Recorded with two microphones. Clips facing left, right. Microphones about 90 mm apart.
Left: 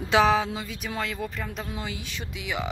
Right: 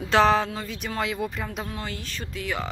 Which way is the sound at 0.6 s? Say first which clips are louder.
Right 3 dB; centre (ahead or behind).